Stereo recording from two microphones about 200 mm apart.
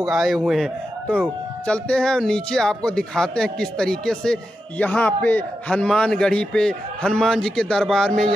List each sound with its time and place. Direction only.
0.0 s speech: centre (ahead or behind)